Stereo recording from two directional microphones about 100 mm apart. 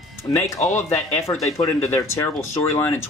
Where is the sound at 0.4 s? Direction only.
25° left (ahead or behind).